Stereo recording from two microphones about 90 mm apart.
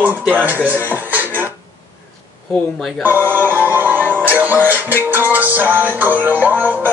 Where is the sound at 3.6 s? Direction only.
20° right (ahead or behind).